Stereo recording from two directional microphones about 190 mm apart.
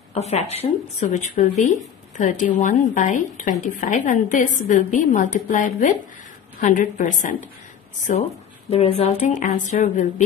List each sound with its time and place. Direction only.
0.1 s a woman's voice: 35° left (ahead or behind)